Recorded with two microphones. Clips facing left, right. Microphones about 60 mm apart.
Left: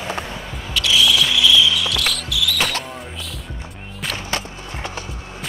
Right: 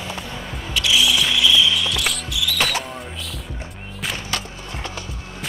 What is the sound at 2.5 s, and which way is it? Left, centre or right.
Music, centre.